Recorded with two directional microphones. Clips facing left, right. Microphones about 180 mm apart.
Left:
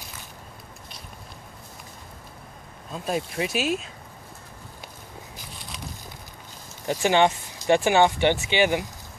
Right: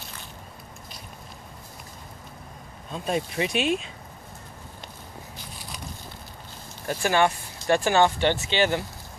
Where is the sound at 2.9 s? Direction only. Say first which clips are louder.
Right 1 dB; centre (ahead or behind).